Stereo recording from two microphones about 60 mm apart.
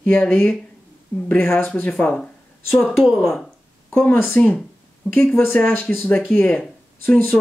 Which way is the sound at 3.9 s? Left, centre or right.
Left.